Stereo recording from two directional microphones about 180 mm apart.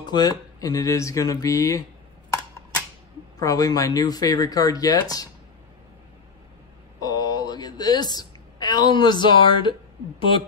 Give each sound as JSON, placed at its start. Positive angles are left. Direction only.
{"t": 0.0, "sound": "speech", "side_deg": 25}
{"t": 3.3, "sound": "speech", "side_deg": 20}
{"t": 7.0, "sound": "a sound", "side_deg": 20}